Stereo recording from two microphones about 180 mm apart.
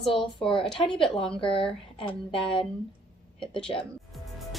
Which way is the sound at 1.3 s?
30° left (ahead or behind).